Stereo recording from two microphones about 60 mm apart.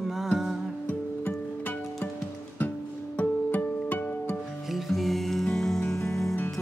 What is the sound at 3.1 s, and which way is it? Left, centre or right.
Music, left.